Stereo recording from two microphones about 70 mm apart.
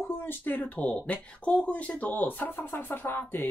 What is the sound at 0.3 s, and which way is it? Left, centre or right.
Speech, left.